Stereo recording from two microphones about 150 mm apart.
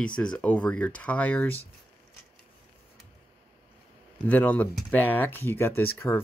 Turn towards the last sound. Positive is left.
turn(degrees=15)  # may be behind; listen again after turning